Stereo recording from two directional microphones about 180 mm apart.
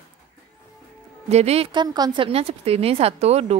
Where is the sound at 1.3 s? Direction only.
35° right (ahead or behind).